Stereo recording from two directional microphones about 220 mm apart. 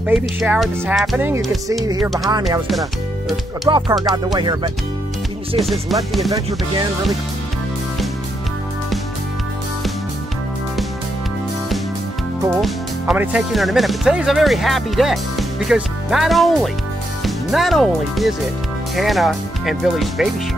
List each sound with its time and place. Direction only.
0.0 s speech: 5° right (ahead or behind)
2.7 s speech: centre (ahead or behind)
3.7 s music: 15° right (ahead or behind)
5.7 s speech: centre (ahead or behind)
12.5 s speech: centre (ahead or behind)